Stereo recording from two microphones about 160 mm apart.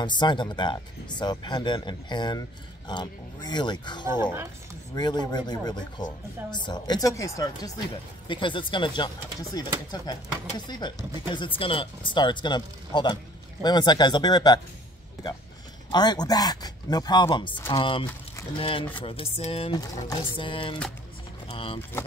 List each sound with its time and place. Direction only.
0.0 s speech: 30° left (ahead or behind)
4.1 s speech: 15° right (ahead or behind)
4.9 s speech: 25° left (ahead or behind)
8.3 s speech: 30° left (ahead or behind)
10.8 s speech: 30° left (ahead or behind)
15.9 s speech: 25° left (ahead or behind)